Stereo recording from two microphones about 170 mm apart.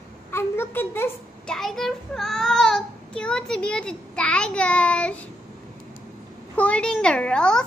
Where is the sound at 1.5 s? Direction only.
Centre (ahead or behind).